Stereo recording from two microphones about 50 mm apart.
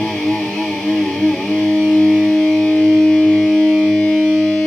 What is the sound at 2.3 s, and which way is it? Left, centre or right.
Music, centre.